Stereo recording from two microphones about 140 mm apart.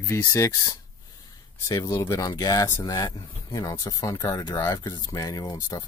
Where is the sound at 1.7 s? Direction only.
25° left (ahead or behind).